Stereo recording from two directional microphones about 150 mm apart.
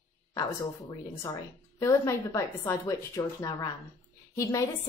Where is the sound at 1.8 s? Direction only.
20° left (ahead or behind).